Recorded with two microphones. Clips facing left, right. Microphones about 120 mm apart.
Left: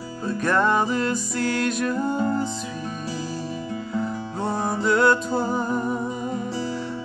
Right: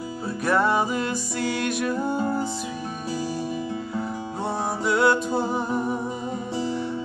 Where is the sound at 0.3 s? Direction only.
10° right (ahead or behind).